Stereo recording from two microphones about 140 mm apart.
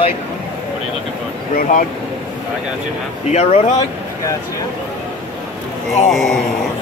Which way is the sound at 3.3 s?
50° left (ahead or behind).